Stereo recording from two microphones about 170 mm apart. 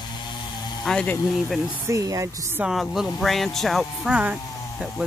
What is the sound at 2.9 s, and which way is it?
Speech, centre (ahead or behind).